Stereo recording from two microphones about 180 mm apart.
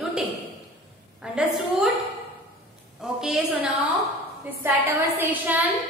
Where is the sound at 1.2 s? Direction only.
5° right (ahead or behind).